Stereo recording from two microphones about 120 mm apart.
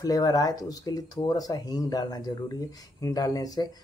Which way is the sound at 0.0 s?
30° left (ahead or behind).